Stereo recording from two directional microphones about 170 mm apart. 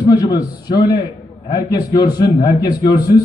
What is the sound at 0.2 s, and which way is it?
A man's voice, 25° left (ahead or behind).